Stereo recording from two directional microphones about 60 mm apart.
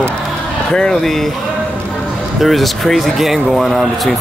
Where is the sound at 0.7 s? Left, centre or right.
Centre.